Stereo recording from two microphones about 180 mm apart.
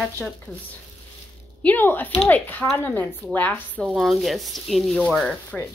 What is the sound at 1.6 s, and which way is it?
A woman's voice, 10° left (ahead or behind).